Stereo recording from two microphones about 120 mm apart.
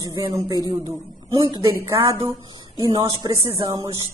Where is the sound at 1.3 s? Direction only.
40° right (ahead or behind).